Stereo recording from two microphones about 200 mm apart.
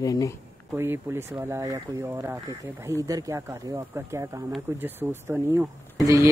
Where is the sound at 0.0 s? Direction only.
15° left (ahead or behind).